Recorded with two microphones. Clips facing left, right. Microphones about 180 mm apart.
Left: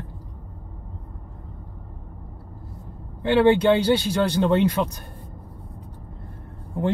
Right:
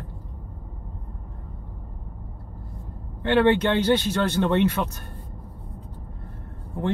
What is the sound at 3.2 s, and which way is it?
Speech, 10° left (ahead or behind).